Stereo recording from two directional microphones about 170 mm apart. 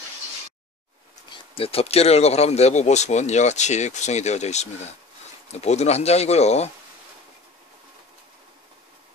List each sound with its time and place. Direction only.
1.5 s speech: 35° left (ahead or behind)